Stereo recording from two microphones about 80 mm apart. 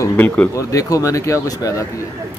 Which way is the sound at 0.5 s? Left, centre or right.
Left.